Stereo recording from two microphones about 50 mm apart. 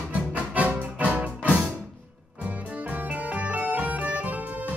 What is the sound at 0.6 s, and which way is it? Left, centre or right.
Music, right.